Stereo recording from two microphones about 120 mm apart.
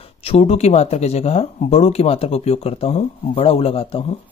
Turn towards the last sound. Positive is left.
turn(degrees=50)  # may be behind; listen again after turning